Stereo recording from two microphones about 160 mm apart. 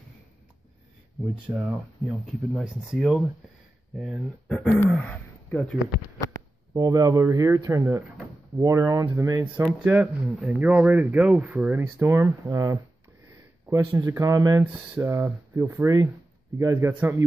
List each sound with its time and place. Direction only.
1.5 s speech: 5° right (ahead or behind); by 5.7 s 10° left (ahead or behind)
6.7 s speech: 20° right (ahead or behind)